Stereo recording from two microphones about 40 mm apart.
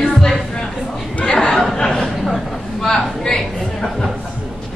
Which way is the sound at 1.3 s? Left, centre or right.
Centre.